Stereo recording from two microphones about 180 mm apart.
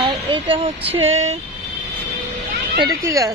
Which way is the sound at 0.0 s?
30° right (ahead or behind).